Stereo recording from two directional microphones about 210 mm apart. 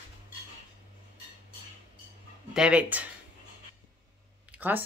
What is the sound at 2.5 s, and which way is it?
Speech, 5° right (ahead or behind).